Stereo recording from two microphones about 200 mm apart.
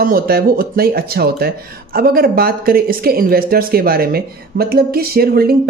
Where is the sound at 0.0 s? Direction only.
45° right (ahead or behind).